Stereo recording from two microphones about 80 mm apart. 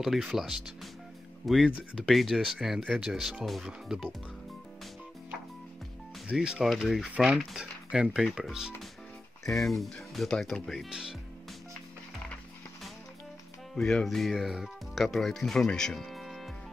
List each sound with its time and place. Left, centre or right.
0.0 s speech: centre
1.7 s speech: centre
2.0 s speech: centre
6.2 s speech: centre
10.9 s speech: centre
13.7 s speech: centre